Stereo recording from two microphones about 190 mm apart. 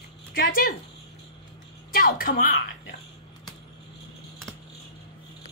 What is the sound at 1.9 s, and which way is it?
Speech, 50° left (ahead or behind).